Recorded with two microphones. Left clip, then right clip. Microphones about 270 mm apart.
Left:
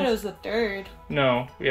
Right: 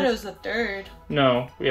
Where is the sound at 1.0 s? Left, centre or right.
Centre.